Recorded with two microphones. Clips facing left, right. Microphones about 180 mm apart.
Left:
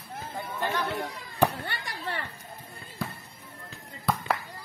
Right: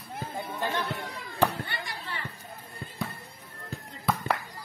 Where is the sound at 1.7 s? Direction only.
55° left (ahead or behind).